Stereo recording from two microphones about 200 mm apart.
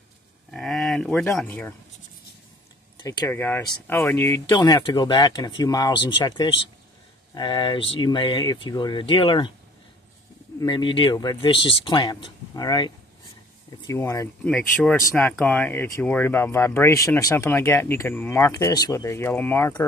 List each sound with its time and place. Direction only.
0.5 s speech: centre (ahead or behind)
3.0 s speech: 15° left (ahead or behind)
10.6 s speech: 25° left (ahead or behind)